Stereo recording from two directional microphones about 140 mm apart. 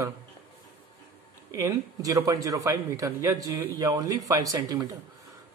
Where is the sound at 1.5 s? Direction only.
25° right (ahead or behind).